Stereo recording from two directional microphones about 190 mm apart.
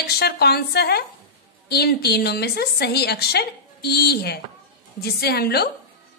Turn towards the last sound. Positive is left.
turn(degrees=55)  # may be behind; listen again after turning